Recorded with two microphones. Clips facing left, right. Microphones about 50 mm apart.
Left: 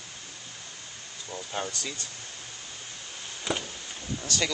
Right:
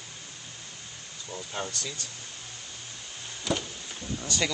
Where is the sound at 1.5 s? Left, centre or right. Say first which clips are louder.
Left 2 dB; centre.